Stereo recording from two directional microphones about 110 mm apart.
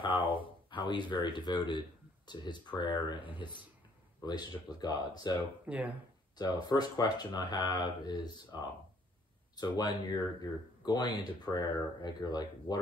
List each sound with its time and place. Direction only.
0.0 s a sound: 50° left (ahead or behind)
0.7 s a man's voice: 45° left (ahead or behind)
5.7 s speech: 10° right (ahead or behind)
6.3 s speech: 40° left (ahead or behind)